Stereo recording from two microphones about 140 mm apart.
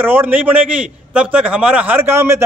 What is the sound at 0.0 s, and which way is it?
A man's voice, 15° right (ahead or behind).